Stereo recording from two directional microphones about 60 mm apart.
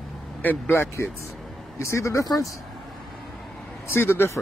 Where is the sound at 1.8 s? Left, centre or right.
Left.